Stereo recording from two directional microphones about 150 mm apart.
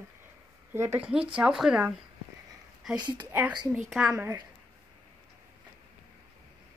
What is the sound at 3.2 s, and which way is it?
Speech, 10° right (ahead or behind).